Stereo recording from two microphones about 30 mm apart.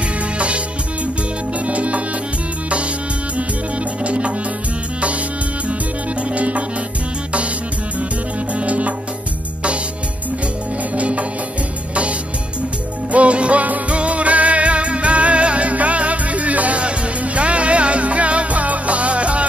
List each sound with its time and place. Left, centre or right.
1.7 s music: right
4.0 s music: right
6.2 s music: right
8.6 s music: right
11.0 s music: right